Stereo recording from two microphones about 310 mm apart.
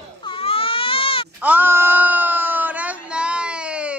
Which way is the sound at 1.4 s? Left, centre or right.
Centre.